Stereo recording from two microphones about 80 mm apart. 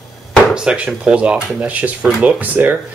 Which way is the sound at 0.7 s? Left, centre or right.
Centre.